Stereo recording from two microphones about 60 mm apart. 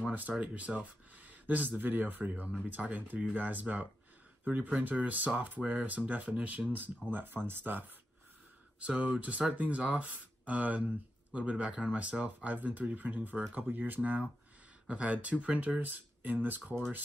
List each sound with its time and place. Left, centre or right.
0.0 s speech: right
5.6 s speech: centre
7.4 s speech: right
8.7 s speech: centre
14.9 s speech: right